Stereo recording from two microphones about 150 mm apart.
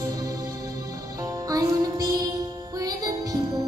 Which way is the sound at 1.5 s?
25° right (ahead or behind).